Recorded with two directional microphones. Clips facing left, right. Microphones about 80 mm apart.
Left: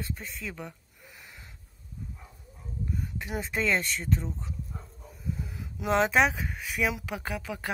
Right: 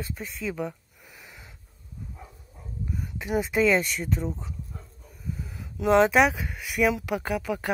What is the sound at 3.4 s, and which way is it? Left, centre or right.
Speech, centre.